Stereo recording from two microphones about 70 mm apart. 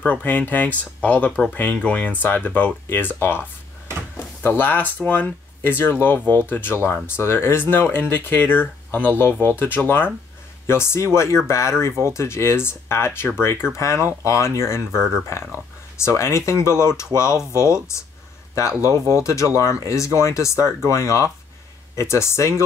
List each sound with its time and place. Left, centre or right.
0.0 s speech: left
15.0 s speech: centre
15.2 s speech: left